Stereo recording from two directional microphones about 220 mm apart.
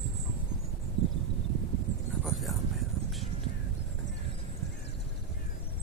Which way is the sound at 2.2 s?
Centre (ahead or behind).